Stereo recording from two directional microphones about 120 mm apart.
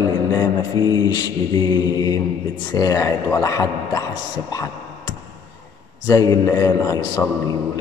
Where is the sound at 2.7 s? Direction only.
30° left (ahead or behind).